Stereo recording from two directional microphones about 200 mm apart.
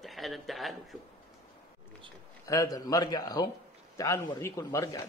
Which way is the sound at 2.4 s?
15° left (ahead or behind).